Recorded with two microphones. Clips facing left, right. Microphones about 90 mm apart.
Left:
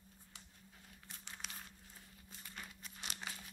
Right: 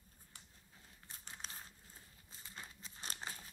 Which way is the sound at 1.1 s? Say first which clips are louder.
Even; 35° right (ahead or behind).